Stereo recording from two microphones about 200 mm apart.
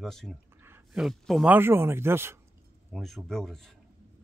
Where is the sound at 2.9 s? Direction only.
Centre (ahead or behind).